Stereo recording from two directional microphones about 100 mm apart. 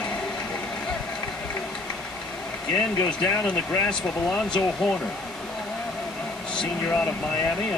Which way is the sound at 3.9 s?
10° left (ahead or behind).